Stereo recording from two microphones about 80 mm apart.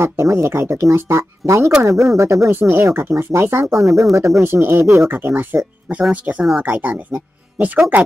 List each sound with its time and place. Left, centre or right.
0.0 s speech: right
2.5 s speech: right
4.4 s speech: right